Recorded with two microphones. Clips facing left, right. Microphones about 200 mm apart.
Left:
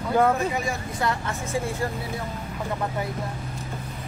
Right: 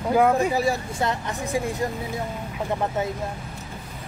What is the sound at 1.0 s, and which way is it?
Speech, 20° right (ahead or behind).